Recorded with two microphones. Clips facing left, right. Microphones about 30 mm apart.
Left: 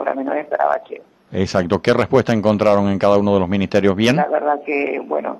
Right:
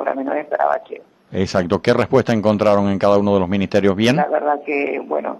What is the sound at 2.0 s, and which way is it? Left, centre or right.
Speech, left.